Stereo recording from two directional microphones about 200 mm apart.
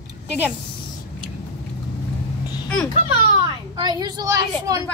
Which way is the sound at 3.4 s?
20° right (ahead or behind).